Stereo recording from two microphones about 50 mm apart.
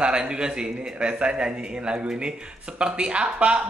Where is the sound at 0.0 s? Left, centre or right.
Centre.